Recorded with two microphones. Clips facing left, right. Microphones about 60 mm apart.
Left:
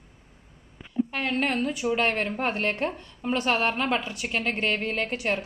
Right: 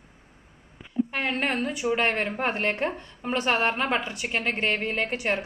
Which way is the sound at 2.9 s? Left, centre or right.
Centre.